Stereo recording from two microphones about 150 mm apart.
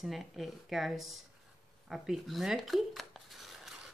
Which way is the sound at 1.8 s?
Centre (ahead or behind).